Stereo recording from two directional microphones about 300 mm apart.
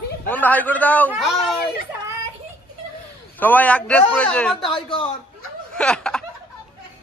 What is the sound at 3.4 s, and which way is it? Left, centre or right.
Speech, centre.